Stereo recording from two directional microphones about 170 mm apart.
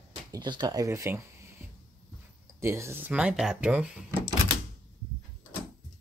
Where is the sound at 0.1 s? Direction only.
25° right (ahead or behind).